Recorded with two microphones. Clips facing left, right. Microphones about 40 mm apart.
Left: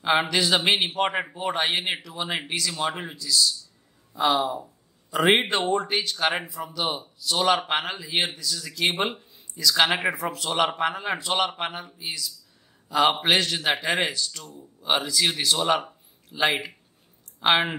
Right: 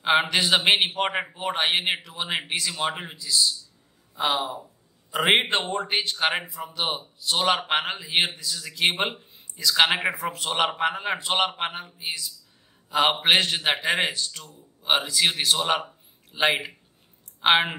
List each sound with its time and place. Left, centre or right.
0.3 s a man's voice: right
9.3 s a sound: right
9.8 s a man's voice: centre